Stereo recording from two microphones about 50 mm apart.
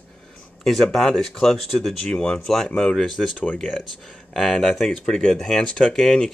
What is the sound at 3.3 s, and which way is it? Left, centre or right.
Speech, left.